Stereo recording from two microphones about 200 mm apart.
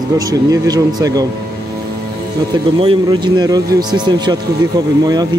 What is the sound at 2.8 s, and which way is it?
Speech, 20° right (ahead or behind).